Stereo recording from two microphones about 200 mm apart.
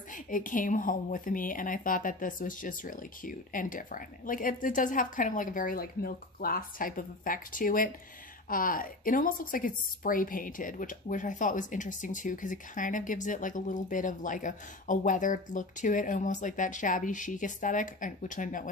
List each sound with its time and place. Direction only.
0.1 s speech: 40° left (ahead or behind)